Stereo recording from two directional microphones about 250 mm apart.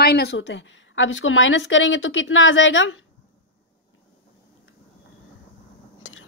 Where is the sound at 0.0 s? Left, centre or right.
Left.